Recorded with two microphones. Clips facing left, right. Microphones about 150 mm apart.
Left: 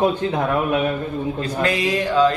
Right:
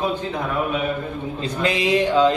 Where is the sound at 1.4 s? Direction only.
20° right (ahead or behind).